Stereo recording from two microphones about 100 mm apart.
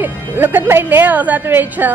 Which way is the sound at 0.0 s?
20° right (ahead or behind).